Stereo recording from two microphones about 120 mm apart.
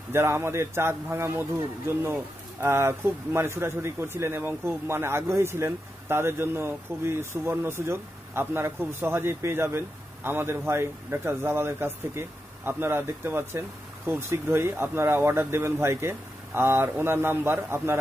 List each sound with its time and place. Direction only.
0.1 s a man's voice: 20° right (ahead or behind)
2.6 s a man's voice: 20° right (ahead or behind)